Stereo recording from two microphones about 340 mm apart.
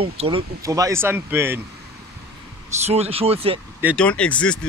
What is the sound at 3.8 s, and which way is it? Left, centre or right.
Speech, centre.